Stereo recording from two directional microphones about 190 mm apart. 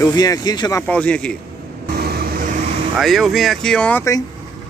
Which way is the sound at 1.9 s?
55° right (ahead or behind).